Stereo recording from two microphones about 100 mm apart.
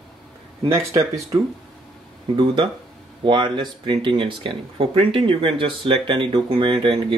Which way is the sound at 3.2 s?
50° right (ahead or behind).